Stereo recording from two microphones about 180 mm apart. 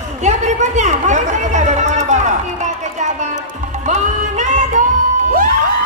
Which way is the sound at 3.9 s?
40° right (ahead or behind).